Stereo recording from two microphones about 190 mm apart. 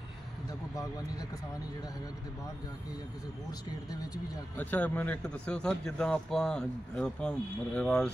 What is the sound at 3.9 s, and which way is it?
Speech, 20° left (ahead or behind).